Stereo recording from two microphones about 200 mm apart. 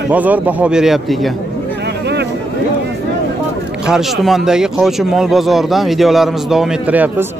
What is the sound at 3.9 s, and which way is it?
Speech, centre (ahead or behind).